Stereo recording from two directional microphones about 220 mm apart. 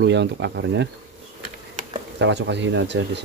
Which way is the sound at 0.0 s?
50° right (ahead or behind).